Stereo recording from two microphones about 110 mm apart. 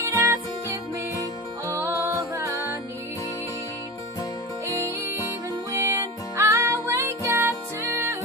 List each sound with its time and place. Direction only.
0.0 s music: 25° right (ahead or behind)
4.6 s music: 25° right (ahead or behind)